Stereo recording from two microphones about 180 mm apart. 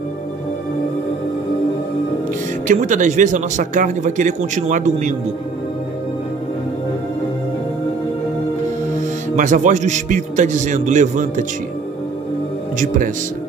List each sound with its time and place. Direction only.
2.7 s a man's voice: 45° right (ahead or behind)
9.3 s a man's voice: 45° right (ahead or behind)
12.7 s a man's voice: 50° right (ahead or behind)